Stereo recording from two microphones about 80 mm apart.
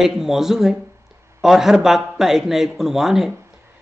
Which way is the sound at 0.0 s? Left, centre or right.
Centre.